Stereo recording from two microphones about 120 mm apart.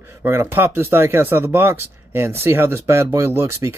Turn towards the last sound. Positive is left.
turn(degrees=-20)  # may be behind; listen again after turning